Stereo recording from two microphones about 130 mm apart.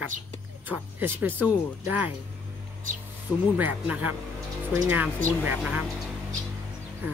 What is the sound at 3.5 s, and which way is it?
Speech, 15° right (ahead or behind).